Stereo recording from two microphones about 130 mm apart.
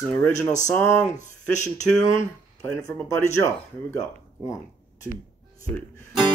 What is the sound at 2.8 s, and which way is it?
Speech, 25° left (ahead or behind).